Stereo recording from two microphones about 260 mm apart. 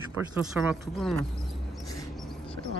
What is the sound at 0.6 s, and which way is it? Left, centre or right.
Speech, centre.